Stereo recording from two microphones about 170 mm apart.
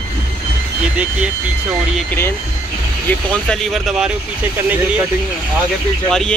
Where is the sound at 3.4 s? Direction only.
Centre (ahead or behind).